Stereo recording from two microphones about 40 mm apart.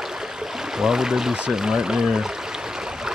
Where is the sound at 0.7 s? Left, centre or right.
Centre.